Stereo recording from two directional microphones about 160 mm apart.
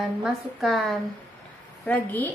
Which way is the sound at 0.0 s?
5° right (ahead or behind).